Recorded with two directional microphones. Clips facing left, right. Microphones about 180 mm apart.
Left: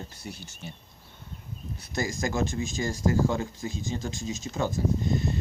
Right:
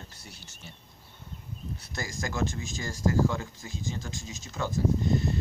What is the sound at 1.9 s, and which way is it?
Speech, 20° left (ahead or behind).